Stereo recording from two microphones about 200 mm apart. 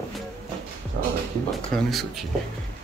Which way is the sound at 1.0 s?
60° right (ahead or behind).